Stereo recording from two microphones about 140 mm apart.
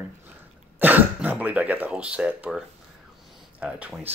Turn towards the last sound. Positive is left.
turn(degrees=-10)  # may be behind; listen again after turning